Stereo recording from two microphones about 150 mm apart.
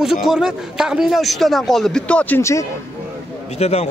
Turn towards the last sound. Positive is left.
turn(degrees=45)  # may be behind; listen again after turning